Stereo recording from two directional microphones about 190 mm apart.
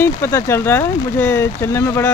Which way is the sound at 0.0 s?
15° left (ahead or behind).